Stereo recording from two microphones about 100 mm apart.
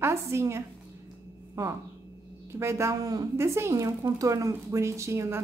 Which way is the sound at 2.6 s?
30° right (ahead or behind).